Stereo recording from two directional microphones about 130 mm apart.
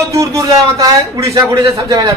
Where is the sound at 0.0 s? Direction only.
25° right (ahead or behind).